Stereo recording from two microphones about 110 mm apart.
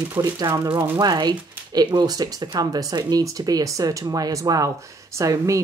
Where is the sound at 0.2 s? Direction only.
25° right (ahead or behind).